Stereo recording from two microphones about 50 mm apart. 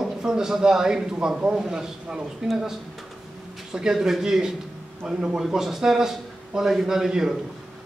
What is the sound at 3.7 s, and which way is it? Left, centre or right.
A man's voice, centre.